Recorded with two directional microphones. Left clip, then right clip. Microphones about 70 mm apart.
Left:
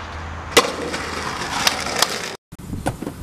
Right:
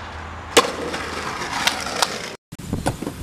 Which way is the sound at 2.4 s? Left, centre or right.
Centre.